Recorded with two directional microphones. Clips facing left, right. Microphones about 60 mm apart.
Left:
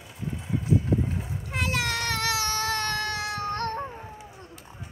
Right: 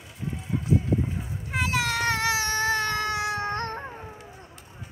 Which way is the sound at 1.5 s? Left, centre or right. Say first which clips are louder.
Right 2 dB; centre.